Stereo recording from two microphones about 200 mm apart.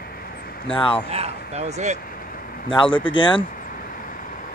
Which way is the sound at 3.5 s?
45° left (ahead or behind).